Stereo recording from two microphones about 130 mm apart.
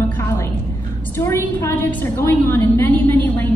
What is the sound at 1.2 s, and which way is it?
A woman's voice, 20° left (ahead or behind).